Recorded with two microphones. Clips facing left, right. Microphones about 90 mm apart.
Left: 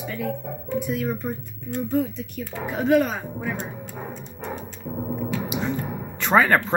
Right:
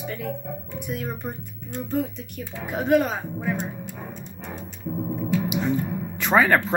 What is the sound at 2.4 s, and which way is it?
Speech, 25° right (ahead or behind).